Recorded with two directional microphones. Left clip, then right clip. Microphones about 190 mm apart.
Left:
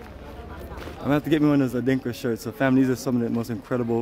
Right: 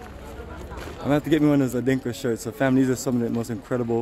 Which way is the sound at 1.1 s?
5° left (ahead or behind).